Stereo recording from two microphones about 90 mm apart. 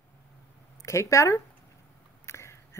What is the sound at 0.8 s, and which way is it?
Speech, 35° left (ahead or behind).